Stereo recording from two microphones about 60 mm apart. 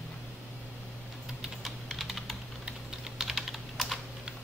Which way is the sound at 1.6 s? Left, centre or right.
Centre.